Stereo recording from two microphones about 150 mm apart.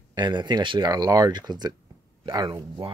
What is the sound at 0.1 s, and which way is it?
Speech, 30° right (ahead or behind).